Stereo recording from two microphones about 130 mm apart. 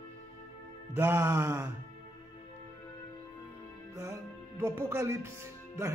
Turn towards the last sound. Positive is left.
turn(degrees=-20)  # may be behind; listen again after turning